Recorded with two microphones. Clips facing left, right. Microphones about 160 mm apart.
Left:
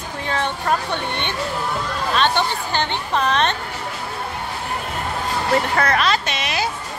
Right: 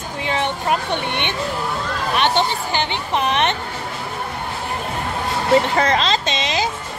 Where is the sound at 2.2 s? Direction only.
15° right (ahead or behind).